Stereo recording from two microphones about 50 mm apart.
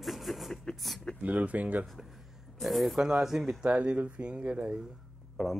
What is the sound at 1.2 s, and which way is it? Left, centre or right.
Speech, right.